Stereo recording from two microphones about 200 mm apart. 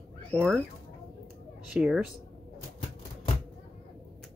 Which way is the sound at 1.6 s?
5° right (ahead or behind).